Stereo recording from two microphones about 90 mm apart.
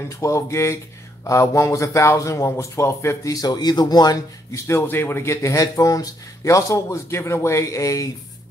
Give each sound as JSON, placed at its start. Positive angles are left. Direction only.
{"t": 0.2, "sound": "speech", "side_deg": 35}
{"t": 3.3, "sound": "speech", "side_deg": 50}
{"t": 4.6, "sound": "speech", "side_deg": 25}